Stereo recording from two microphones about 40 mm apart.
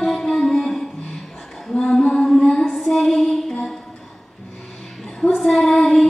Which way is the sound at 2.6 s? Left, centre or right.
Centre.